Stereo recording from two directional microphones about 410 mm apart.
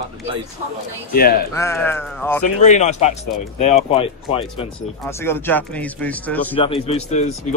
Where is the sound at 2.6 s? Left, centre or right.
Centre.